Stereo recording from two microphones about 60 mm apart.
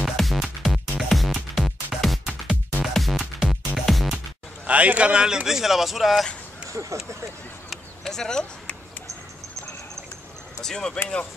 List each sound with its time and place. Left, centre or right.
0.0 s music: centre
4.6 s speech: right; by 6.2 s centre
6.7 s speech: right
7.7 s a sound: centre
10.6 s speech: centre